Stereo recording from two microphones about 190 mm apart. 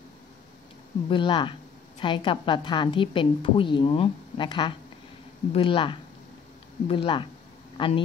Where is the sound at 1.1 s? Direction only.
25° left (ahead or behind).